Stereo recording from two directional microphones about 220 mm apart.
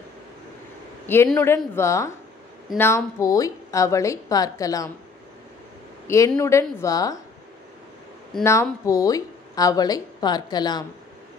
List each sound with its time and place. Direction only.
1.0 s speech: 10° left (ahead or behind)
6.0 s speech: 15° left (ahead or behind)
8.5 s speech: 15° left (ahead or behind)